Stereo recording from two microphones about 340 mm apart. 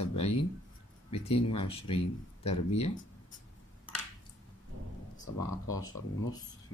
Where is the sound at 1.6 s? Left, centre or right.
Centre.